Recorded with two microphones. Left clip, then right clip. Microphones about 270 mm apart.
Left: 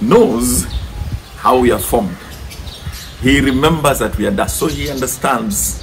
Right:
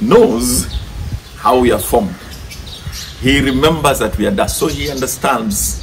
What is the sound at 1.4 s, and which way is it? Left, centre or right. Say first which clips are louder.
Speech: even; centre.